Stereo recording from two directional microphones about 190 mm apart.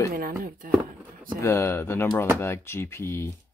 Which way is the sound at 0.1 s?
50° right (ahead or behind).